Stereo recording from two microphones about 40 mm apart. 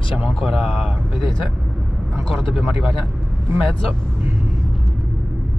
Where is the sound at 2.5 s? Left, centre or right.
Right.